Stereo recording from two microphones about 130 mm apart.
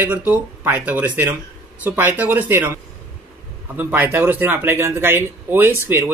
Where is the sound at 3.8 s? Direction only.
15° right (ahead or behind).